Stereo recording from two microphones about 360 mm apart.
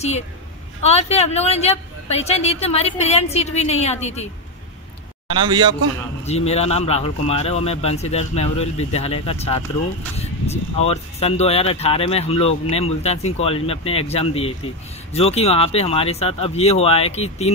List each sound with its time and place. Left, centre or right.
0.8 s speech: centre
5.3 s a man's voice: centre
6.2 s speech: centre